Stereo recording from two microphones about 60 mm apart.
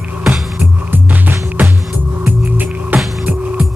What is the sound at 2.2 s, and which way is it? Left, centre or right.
Music, right.